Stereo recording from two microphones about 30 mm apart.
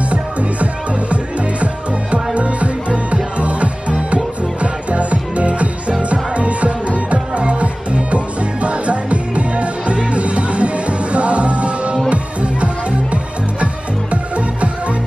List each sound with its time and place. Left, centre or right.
0.1 s music: right